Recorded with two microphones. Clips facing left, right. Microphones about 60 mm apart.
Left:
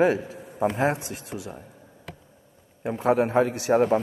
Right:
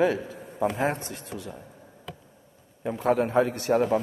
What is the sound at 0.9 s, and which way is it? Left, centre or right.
Speech, centre.